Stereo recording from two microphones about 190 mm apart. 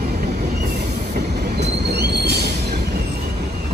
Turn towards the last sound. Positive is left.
turn(degrees=-60)  # may be behind; listen again after turning